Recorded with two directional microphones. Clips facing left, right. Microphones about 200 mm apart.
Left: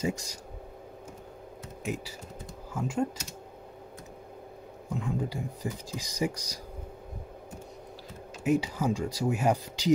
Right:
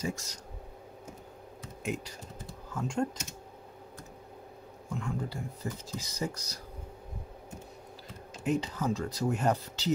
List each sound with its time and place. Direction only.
0.0 s speech: 15° left (ahead or behind)
2.7 s speech: 5° left (ahead or behind)
4.8 s speech: 15° left (ahead or behind)
8.5 s speech: 10° left (ahead or behind)